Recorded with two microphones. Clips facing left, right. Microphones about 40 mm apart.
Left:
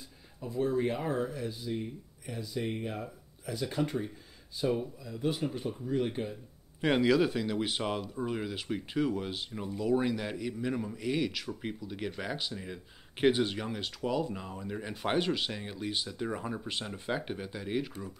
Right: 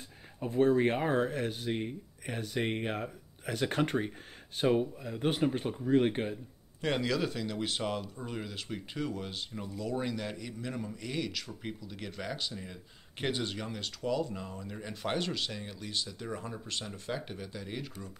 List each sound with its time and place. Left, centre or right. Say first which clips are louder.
0.4 s speech: right 4 dB; right
6.8 s speech: left 5 dB; centre